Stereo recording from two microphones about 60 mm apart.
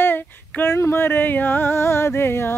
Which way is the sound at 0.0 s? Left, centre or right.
Left.